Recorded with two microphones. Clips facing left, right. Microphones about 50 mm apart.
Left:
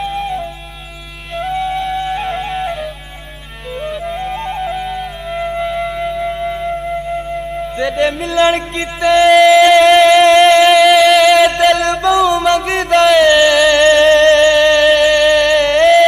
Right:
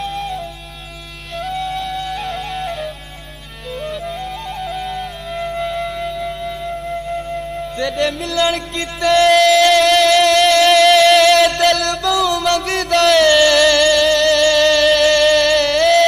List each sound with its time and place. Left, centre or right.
0.0 s flute: left
3.8 s flute: centre
4.3 s flute: left
14.6 s music: centre